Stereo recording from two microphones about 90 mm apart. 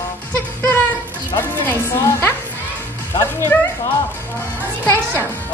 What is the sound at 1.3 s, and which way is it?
Music, 25° left (ahead or behind).